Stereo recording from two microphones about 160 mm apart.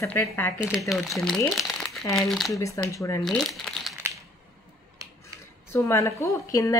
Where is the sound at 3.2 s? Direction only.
Centre (ahead or behind).